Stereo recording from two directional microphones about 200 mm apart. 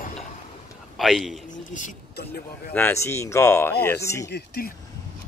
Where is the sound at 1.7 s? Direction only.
40° left (ahead or behind).